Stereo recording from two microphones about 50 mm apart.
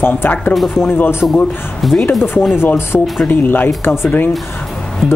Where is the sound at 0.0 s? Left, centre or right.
Left.